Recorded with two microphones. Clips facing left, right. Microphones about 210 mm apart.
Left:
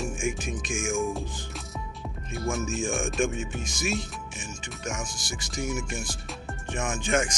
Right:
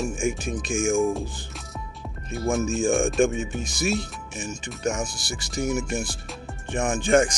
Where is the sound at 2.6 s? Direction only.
35° right (ahead or behind).